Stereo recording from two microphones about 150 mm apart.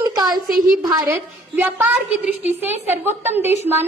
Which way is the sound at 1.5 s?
10° right (ahead or behind).